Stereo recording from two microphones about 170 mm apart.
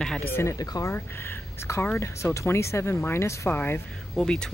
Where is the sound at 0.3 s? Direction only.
15° left (ahead or behind).